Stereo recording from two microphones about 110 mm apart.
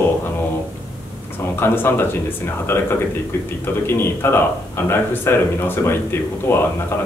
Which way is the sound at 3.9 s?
20° left (ahead or behind).